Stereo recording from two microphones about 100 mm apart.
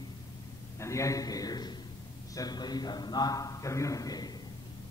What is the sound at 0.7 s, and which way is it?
A man's voice, 30° left (ahead or behind).